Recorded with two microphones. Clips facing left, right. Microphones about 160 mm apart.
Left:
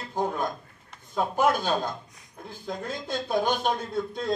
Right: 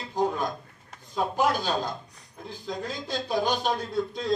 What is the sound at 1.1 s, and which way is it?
Speech, 50° left (ahead or behind).